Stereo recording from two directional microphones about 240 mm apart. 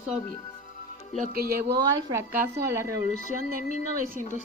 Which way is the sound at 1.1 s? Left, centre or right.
Right.